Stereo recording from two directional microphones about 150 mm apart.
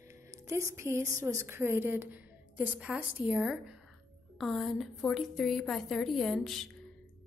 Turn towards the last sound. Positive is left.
turn(degrees=0)  # may be behind; listen again after turning